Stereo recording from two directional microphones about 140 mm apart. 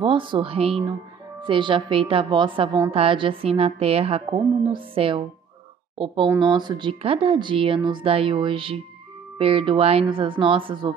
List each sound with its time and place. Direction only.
0.0 s a woman's voice: 35° right (ahead or behind)